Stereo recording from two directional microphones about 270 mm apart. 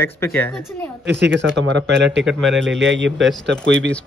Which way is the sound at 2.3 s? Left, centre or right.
Centre.